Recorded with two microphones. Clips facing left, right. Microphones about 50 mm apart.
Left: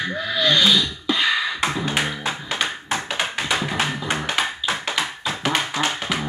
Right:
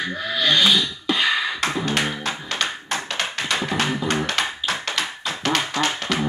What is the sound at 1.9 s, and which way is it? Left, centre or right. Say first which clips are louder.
Tap: even; centre.